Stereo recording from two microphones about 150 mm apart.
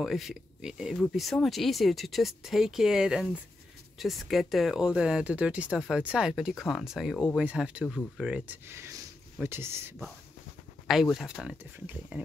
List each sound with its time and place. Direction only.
0.0 s speech: centre (ahead or behind)
10.9 s speech: centre (ahead or behind)